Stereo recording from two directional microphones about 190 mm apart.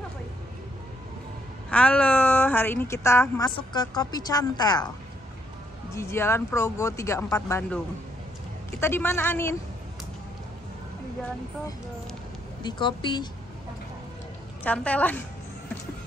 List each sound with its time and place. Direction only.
1.7 s a woman's voice: 5° left (ahead or behind)
5.9 s a woman's voice: 15° left (ahead or behind)
12.6 s a woman's voice: 25° left (ahead or behind)
14.6 s a woman's voice: 5° left (ahead or behind)